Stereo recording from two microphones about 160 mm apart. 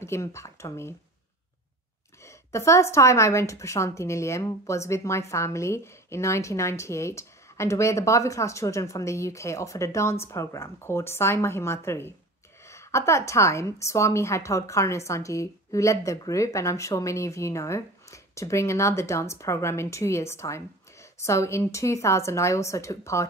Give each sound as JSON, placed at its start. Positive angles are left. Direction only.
{"t": 0.0, "sound": "a woman's voice", "side_deg": 15}
{"t": 2.2, "sound": "a woman's voice", "side_deg": 20}